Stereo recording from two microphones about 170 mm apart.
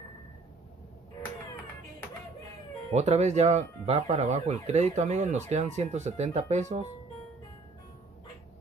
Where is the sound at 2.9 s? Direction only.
40° right (ahead or behind).